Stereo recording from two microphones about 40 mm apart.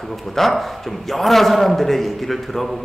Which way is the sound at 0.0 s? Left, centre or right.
Centre.